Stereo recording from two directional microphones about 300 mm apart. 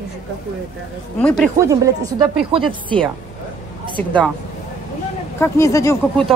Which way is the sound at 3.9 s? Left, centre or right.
Centre.